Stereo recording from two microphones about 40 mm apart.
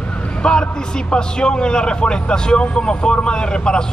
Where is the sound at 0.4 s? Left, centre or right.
Left.